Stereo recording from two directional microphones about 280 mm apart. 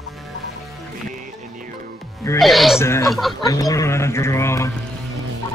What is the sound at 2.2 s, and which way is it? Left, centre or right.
A woman's voice, centre.